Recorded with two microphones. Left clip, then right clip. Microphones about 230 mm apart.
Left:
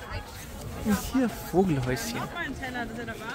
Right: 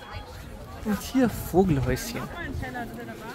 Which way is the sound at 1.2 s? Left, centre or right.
Centre.